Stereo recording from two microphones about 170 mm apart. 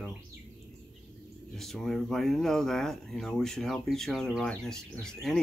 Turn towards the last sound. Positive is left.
turn(degrees=5)  # may be behind; listen again after turning